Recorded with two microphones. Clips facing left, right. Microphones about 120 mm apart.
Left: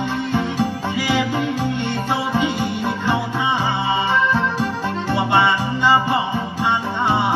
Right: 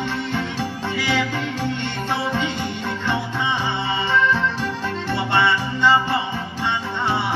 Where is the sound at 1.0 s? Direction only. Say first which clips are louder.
Left 3 dB; 15° left (ahead or behind).